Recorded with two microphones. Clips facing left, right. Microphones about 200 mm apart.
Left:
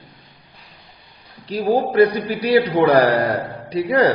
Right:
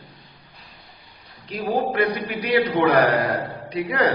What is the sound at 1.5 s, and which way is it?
A man's voice, 35° left (ahead or behind).